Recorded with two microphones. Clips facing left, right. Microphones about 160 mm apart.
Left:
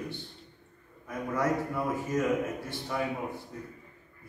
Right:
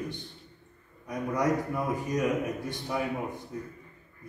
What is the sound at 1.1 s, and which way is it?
A man's voice, 15° right (ahead or behind).